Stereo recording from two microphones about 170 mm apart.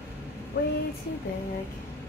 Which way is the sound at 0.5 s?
70° left (ahead or behind).